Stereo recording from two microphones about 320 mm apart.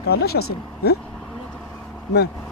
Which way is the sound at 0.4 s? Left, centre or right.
Left.